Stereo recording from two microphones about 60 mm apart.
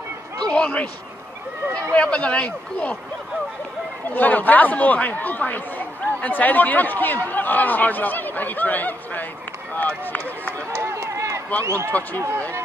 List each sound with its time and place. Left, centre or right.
0.5 s speech: left
1.9 s speech: left
4.1 s speech: left
10.7 s run: right
11.6 s speech: right